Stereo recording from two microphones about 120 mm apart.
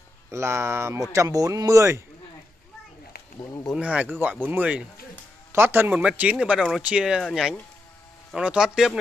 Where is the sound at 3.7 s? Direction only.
10° right (ahead or behind).